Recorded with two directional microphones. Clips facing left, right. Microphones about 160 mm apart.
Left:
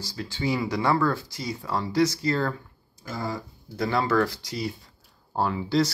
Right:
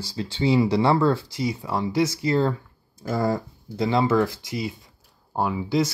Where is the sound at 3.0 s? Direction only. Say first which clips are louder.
Right 8 dB; 55° right (ahead or behind).